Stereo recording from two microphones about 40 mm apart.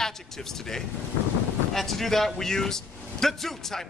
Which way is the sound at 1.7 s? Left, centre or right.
Centre.